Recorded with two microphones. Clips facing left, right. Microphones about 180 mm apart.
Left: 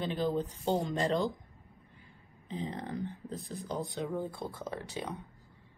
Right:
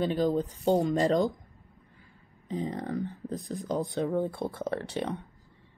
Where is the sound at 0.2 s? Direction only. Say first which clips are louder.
Right 3 dB; 40° right (ahead or behind).